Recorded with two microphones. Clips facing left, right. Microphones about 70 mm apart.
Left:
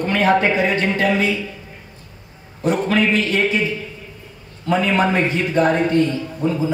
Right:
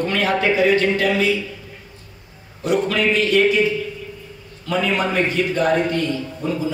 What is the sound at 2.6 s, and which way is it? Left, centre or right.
Speech, left.